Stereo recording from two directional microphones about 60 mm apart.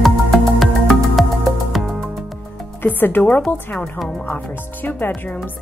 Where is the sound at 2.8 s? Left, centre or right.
Left.